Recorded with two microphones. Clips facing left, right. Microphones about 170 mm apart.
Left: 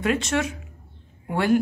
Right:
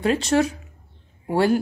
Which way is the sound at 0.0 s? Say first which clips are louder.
Right 4 dB; 30° right (ahead or behind).